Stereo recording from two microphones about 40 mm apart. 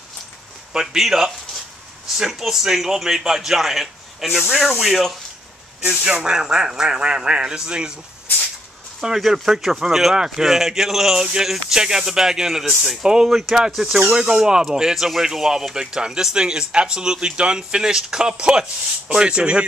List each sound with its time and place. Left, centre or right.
0.7 s a man's voice: centre
6.1 s a man's voice: centre
9.0 s a man's voice: centre